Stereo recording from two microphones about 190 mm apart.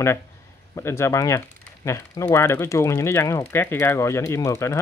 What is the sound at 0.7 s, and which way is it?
Speech, 15° left (ahead or behind).